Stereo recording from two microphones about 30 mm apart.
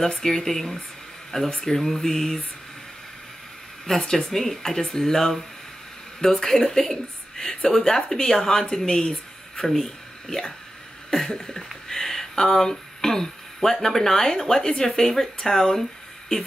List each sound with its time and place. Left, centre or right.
0.0 s speech: centre
1.8 s speech: centre
3.8 s speech: centre
9.7 s speech: centre
11.1 s speech: centre
14.7 s speech: left
15.0 s speech: centre